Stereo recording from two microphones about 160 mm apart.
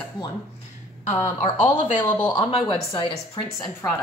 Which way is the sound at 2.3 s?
30° left (ahead or behind).